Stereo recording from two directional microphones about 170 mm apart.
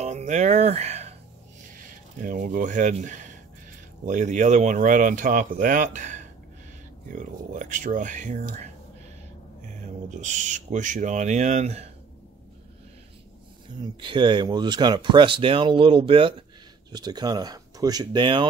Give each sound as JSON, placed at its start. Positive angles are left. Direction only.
{"t": 0.0, "sound": "speech", "side_deg": -45}
{"t": 1.6, "sound": "speech", "side_deg": -50}
{"t": 10.0, "sound": "speech", "side_deg": -45}
{"t": 13.7, "sound": "speech", "side_deg": -30}